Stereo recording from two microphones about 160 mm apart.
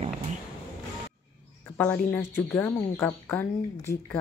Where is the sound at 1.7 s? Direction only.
10° left (ahead or behind).